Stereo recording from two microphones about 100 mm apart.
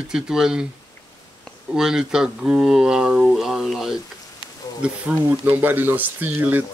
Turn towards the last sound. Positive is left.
turn(degrees=-20)  # may be behind; listen again after turning